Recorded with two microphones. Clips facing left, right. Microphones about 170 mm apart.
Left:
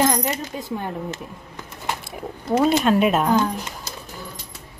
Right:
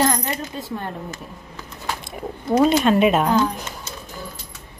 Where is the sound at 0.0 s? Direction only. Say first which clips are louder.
Left 1 dB; 15° left (ahead or behind).